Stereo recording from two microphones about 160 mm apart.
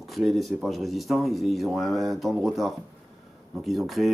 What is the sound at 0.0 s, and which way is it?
Speech, centre (ahead or behind).